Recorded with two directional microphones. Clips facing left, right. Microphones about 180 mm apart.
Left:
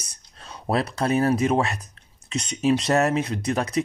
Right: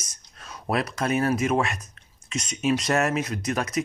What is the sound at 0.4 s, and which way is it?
Speech, 30° left (ahead or behind).